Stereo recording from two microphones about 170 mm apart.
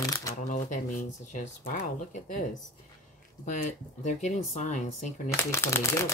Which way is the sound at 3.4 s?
45° left (ahead or behind).